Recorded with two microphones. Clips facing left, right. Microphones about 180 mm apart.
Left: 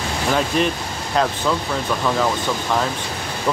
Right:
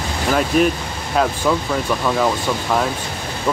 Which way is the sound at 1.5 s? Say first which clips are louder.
Right 3 dB; 10° right (ahead or behind).